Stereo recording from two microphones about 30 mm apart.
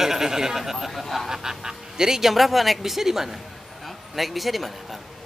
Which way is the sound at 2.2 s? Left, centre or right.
Centre.